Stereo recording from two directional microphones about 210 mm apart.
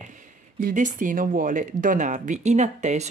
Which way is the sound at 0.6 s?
40° right (ahead or behind).